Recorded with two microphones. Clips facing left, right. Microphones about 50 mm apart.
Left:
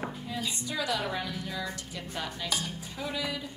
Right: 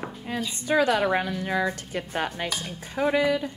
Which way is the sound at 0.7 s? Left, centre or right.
Right.